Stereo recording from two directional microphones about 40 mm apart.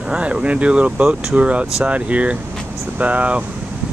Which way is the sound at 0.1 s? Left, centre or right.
Right.